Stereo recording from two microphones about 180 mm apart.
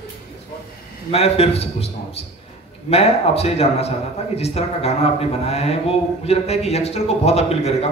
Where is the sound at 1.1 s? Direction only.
35° left (ahead or behind).